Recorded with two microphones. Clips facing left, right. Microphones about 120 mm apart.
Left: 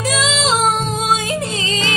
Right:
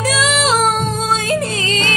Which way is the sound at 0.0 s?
25° left (ahead or behind).